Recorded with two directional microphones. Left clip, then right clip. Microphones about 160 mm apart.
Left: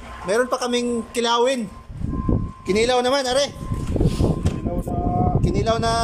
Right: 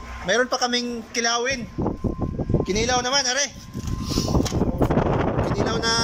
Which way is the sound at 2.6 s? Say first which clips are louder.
Left 6 dB; 25° left (ahead or behind).